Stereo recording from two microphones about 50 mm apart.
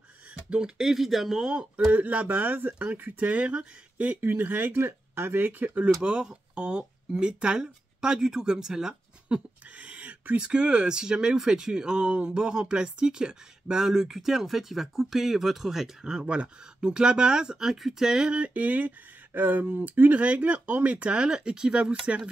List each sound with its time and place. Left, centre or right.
0.3 s speech: centre
1.5 s speech: centre
1.9 s speech: right
4.2 s speech: right
6.0 s speech: centre
9.3 s speech: right
10.5 s speech: centre
18.4 s speech: right